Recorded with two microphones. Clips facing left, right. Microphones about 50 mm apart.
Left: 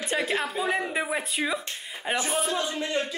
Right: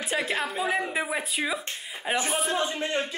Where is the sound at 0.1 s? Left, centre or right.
Centre.